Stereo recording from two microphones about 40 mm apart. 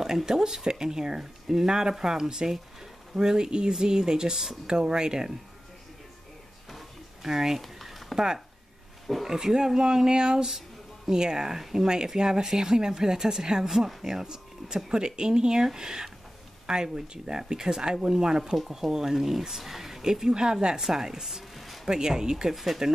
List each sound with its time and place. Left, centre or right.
0.0 s speech: centre
7.2 s speech: centre
7.6 s a sound: centre
9.0 s speech: centre
9.3 s speech: centre
21.8 s speech: centre